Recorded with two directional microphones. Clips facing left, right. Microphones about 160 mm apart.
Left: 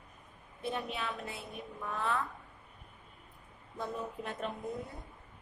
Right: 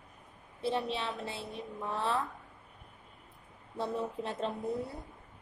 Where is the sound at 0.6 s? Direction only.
30° right (ahead or behind).